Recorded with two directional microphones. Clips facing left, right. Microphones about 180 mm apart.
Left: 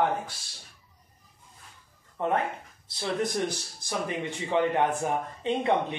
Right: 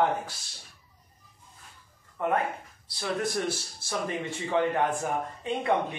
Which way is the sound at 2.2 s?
20° left (ahead or behind).